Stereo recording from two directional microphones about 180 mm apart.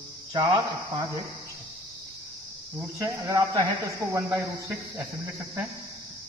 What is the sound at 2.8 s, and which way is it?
Speech, 15° right (ahead or behind).